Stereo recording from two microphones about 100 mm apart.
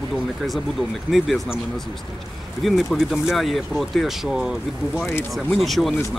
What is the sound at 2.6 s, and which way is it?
Speech, centre (ahead or behind).